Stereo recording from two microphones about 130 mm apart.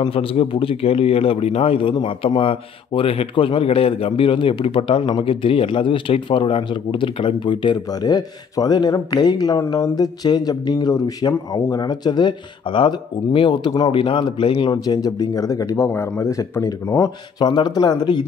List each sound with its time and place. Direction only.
0.1 s a man's voice: 45° left (ahead or behind)